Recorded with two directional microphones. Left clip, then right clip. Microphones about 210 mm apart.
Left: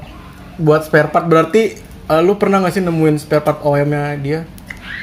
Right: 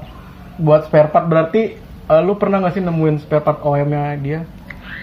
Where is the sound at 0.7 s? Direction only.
5° left (ahead or behind).